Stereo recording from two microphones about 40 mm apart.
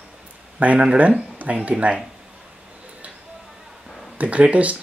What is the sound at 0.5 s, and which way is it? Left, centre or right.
Speech, right.